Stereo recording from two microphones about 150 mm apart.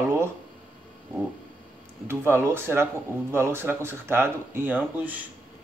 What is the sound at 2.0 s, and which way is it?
Speech, 15° right (ahead or behind).